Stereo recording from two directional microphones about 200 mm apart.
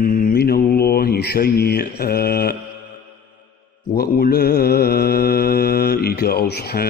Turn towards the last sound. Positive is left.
turn(degrees=50)  # may be behind; listen again after turning